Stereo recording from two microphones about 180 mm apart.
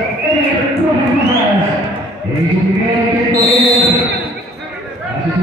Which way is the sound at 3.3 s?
35° left (ahead or behind).